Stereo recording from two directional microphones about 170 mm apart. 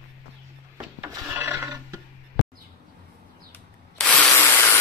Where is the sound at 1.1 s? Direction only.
15° right (ahead or behind).